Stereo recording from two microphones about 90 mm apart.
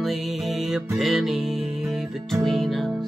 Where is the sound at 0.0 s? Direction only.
Centre (ahead or behind).